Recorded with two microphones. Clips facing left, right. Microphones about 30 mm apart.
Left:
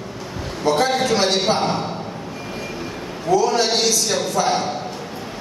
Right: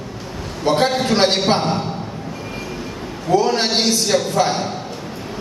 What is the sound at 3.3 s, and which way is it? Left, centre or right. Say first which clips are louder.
A man's voice: right 1 dB; right.